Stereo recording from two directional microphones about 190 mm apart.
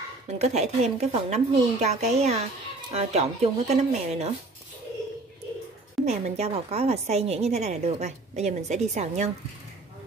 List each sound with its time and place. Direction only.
0.4 s a woman's voice: 35° right (ahead or behind)
6.0 s a woman's voice: 35° right (ahead or behind)